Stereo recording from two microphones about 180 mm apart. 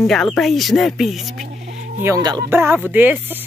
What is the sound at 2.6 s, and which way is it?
Speech, 10° right (ahead or behind).